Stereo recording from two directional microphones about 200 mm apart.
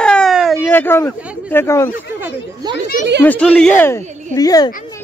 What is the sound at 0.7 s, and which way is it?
A child's voice, 10° left (ahead or behind).